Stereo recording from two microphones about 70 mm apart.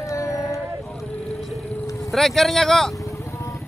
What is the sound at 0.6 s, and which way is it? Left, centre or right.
Vehicle, centre.